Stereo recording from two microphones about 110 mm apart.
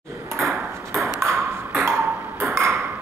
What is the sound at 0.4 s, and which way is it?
Ping, 25° right (ahead or behind).